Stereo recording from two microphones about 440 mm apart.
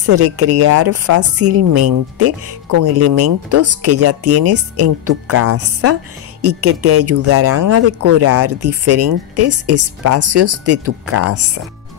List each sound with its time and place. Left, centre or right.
0.0 s speech: right
1.7 s speech: right
2.1 s speech: right